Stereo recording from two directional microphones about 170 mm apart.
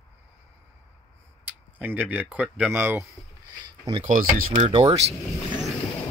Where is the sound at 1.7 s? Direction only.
10° right (ahead or behind).